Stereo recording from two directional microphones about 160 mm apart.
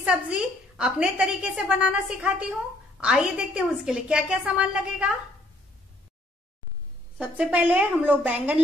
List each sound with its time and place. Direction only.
0.0 s a woman's voice: 5° right (ahead or behind)
7.2 s a woman's voice: 10° right (ahead or behind)